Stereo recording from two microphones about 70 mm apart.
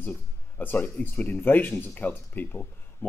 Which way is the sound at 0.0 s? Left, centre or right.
Left.